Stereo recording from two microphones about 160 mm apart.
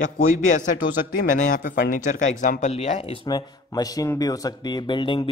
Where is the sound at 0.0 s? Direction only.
55° left (ahead or behind).